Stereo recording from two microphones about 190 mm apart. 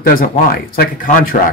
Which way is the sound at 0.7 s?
50° left (ahead or behind).